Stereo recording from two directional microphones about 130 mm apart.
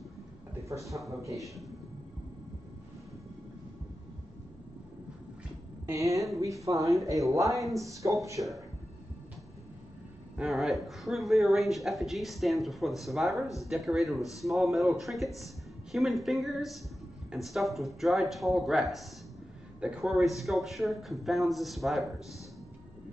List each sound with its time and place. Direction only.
0.9 s speech: 25° right (ahead or behind)
5.9 s speech: 25° right (ahead or behind)
10.3 s speech: centre (ahead or behind)